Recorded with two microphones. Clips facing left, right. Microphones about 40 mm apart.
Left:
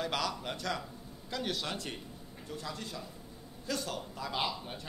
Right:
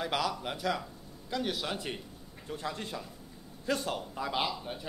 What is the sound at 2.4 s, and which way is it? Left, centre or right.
A man's voice, right.